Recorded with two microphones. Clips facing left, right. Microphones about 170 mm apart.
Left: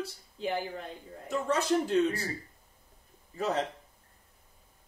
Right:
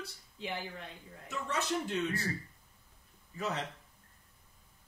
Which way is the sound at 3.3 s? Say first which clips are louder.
Left 6 dB; 40° left (ahead or behind).